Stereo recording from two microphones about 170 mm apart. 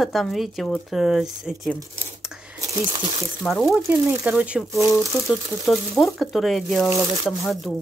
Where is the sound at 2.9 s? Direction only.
25° right (ahead or behind).